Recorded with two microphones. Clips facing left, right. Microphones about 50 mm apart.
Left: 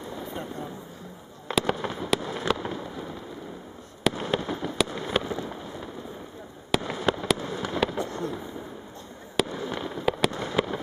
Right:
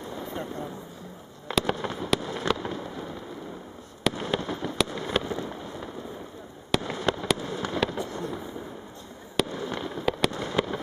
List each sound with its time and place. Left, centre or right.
0.3 s vehicle: centre
1.7 s fireworks: centre
8.0 s a sound: left
9.4 s fireworks: centre